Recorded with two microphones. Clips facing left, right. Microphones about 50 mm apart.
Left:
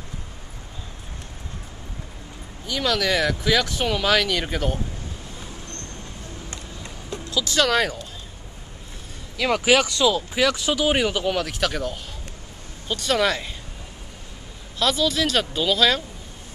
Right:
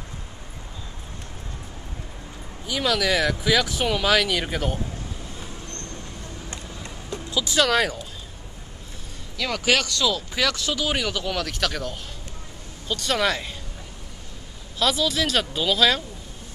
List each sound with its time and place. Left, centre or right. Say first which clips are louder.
2.6 s speech: even; centre
7.2 s music: left 1 dB; centre
7.5 s speech: even; centre
9.4 s speech: left 4 dB; centre
14.8 s speech: left 1 dB; centre